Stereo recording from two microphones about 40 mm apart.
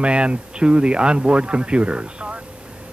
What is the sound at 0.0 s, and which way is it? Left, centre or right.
Speech, right.